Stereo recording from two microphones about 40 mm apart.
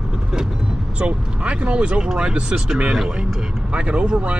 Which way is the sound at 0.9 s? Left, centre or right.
Right.